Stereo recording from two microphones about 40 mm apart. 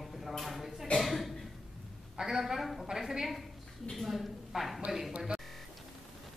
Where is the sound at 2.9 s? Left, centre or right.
Centre.